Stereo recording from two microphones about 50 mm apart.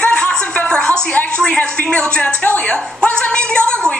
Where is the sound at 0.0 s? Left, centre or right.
Centre.